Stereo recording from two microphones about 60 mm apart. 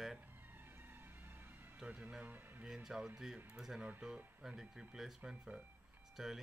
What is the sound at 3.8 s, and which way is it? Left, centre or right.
Speech, centre.